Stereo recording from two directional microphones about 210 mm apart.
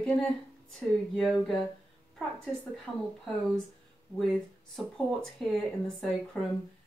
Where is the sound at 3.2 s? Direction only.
Centre (ahead or behind).